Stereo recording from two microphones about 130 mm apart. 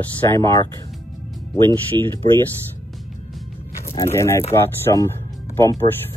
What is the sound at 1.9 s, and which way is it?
Speech, 20° left (ahead or behind).